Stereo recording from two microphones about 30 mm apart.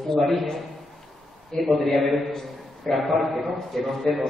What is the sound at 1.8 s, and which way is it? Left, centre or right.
A man's voice, centre.